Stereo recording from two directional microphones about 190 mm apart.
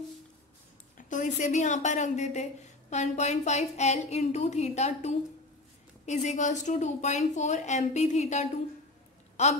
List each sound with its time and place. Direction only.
0.9 s a woman's voice: 40° left (ahead or behind)